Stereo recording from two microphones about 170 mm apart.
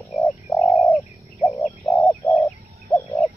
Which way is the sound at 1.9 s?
15° left (ahead or behind).